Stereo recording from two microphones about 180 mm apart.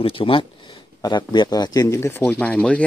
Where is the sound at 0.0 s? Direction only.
30° left (ahead or behind).